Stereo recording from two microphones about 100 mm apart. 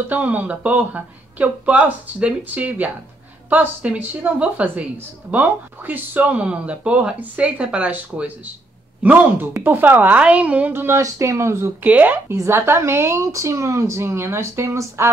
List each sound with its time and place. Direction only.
0.1 s speech: 15° right (ahead or behind)
10.7 s speech: 25° right (ahead or behind)